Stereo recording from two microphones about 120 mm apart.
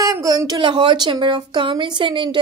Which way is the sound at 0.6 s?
40° right (ahead or behind).